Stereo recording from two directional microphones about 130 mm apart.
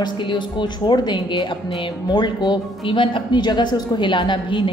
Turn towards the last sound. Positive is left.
turn(degrees=40)  # may be behind; listen again after turning